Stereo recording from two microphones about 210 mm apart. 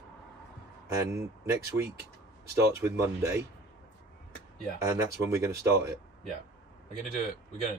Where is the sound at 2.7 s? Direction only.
15° right (ahead or behind).